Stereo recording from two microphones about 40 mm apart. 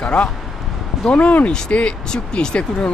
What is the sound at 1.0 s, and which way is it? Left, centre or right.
Speech, left.